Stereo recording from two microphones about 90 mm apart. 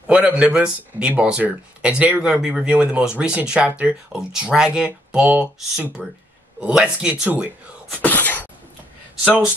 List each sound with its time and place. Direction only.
0.0 s speech: 15° right (ahead or behind)
8.0 s wail: 20° left (ahead or behind)